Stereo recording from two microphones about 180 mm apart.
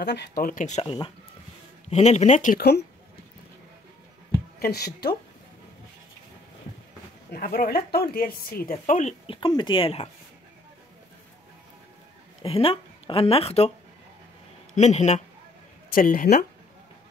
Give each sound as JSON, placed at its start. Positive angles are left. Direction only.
{"t": 0.0, "sound": "speech", "side_deg": 70}
{"t": 0.8, "sound": "speech", "side_deg": 25}
{"t": 1.9, "sound": "speech", "side_deg": 40}
{"t": 4.6, "sound": "speech", "side_deg": 60}
{"t": 7.2, "sound": "speech", "side_deg": 55}
{"t": 9.3, "sound": "speech", "side_deg": 25}
{"t": 12.4, "sound": "speech", "side_deg": 35}
{"t": 14.8, "sound": "speech", "side_deg": 40}
{"t": 15.9, "sound": "speech", "side_deg": 50}